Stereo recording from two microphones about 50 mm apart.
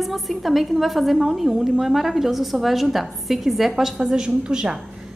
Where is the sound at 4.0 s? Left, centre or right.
Centre.